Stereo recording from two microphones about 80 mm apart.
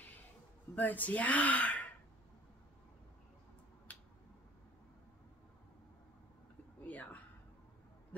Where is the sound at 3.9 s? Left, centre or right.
Left.